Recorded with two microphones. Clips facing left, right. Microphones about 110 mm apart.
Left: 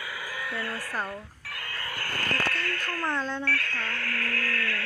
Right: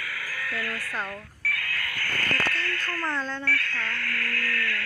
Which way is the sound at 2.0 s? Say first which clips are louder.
Right 1 dB; 30° left (ahead or behind).